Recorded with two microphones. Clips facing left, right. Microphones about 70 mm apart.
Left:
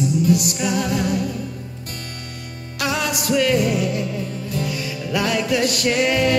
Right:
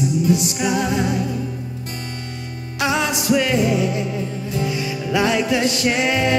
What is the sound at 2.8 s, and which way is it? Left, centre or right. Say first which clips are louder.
Music: right 2 dB; right.